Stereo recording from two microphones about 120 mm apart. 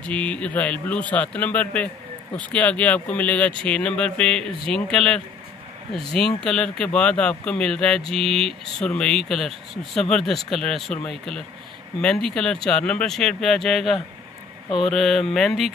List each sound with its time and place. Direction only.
0.0 s speech: 10° left (ahead or behind)
6.2 s speech: 5° left (ahead or behind)